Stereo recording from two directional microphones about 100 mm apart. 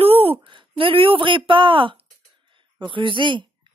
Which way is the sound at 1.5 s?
55° right (ahead or behind).